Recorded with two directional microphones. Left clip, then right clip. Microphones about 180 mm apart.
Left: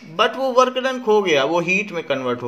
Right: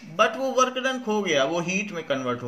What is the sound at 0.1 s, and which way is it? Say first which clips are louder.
A man's voice: left 5 dB; 40° left (ahead or behind).